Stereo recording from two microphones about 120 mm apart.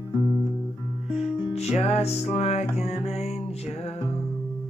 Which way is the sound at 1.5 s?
60° left (ahead or behind).